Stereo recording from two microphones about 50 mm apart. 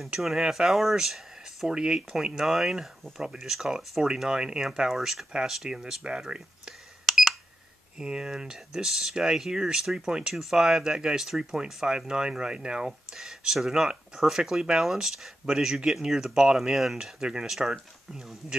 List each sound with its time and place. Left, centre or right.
0.5 s speech: centre
7.1 s beep: centre
8.0 s speech: centre